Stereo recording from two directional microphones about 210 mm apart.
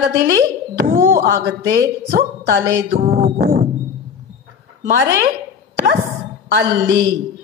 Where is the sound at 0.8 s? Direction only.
45° right (ahead or behind).